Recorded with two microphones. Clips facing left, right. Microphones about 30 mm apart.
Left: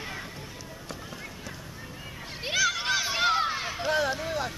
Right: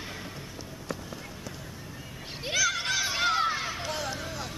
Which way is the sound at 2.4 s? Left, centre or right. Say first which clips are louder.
Left 1 dB; centre.